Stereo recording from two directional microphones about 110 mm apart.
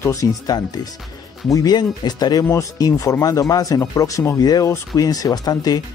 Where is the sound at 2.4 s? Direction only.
25° left (ahead or behind).